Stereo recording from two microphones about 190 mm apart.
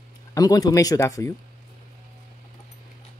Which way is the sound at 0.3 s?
20° left (ahead or behind).